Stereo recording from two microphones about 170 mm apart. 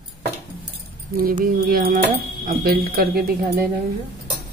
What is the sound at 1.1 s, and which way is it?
A woman's voice, 55° right (ahead or behind).